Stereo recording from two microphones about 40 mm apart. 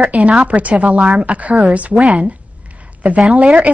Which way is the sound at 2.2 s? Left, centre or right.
Right.